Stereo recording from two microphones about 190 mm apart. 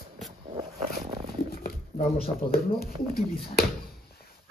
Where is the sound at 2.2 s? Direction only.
50° left (ahead or behind).